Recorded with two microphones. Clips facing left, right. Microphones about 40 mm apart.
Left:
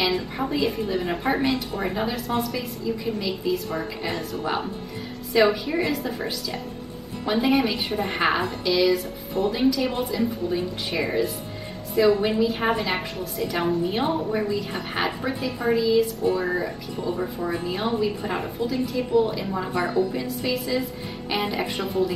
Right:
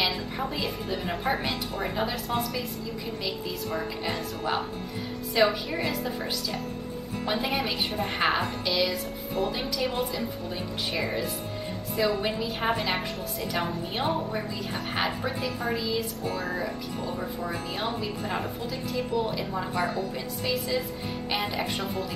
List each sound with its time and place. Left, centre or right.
0.0 s a woman's voice: centre
5.3 s a woman's voice: centre
7.3 s a woman's voice: centre
16.3 s speech: centre
18.7 s a woman's voice: centre